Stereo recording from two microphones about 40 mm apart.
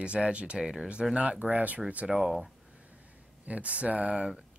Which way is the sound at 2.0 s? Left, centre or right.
Centre.